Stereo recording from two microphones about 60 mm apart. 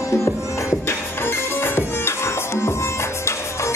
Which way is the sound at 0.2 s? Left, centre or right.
Left.